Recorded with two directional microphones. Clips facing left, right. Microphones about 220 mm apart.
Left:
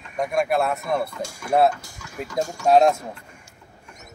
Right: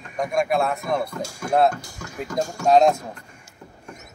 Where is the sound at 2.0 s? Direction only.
50° right (ahead or behind).